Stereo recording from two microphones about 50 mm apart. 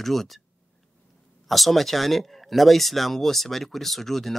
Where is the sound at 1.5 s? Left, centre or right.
Centre.